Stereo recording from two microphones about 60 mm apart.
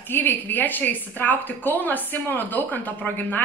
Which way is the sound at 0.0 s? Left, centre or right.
Left.